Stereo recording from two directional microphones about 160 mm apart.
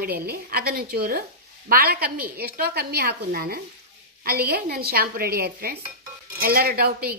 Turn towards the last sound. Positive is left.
turn(degrees=-70)  # may be behind; listen again after turning